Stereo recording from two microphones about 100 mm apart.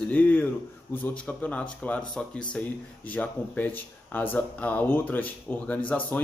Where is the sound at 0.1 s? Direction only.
15° left (ahead or behind).